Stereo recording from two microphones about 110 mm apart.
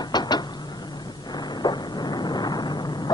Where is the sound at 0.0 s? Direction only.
40° left (ahead or behind).